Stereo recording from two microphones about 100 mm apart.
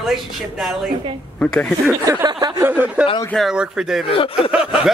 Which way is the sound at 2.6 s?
20° right (ahead or behind).